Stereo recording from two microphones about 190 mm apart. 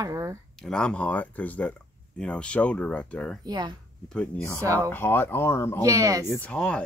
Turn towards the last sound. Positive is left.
turn(degrees=5)  # may be behind; listen again after turning